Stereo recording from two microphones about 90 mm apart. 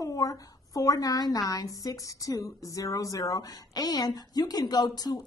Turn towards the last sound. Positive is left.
turn(degrees=45)  # may be behind; listen again after turning